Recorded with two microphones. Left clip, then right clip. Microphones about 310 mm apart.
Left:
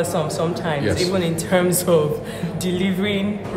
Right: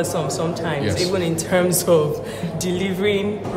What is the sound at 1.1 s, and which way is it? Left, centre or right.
A woman's voice, centre.